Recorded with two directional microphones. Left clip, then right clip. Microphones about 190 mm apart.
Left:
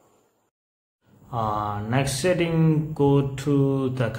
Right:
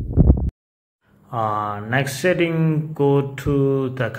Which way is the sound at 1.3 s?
20° right (ahead or behind).